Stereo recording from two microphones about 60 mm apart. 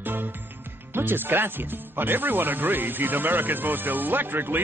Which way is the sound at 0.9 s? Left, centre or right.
Right.